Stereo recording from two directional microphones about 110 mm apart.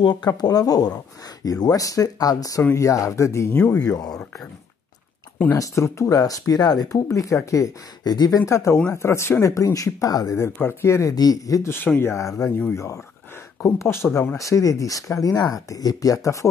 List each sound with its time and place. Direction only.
0.0 s speech: 40° left (ahead or behind); by 3.8 s 20° left (ahead or behind)
3.8 s speech: 35° left (ahead or behind)
5.6 s speech: 30° left (ahead or behind)